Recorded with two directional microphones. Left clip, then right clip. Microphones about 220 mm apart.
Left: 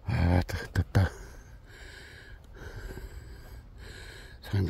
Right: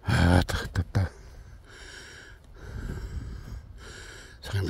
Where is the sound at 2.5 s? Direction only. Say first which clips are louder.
Right 1 dB; centre (ahead or behind).